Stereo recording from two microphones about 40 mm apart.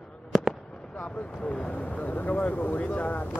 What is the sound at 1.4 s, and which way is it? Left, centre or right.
Speech, left.